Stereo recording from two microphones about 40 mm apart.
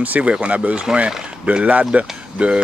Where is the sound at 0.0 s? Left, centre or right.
Right.